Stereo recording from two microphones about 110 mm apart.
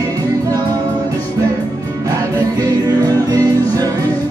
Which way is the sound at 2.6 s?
35° right (ahead or behind).